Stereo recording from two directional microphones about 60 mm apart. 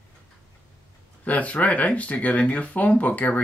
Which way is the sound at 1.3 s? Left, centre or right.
Left.